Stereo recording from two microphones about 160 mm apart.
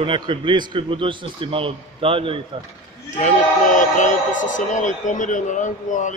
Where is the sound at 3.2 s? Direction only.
50° left (ahead or behind).